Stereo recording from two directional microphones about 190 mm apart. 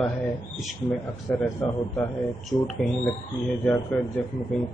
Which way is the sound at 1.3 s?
5° left (ahead or behind).